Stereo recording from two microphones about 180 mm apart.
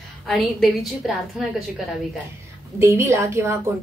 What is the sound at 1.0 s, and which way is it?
Speech, centre (ahead or behind).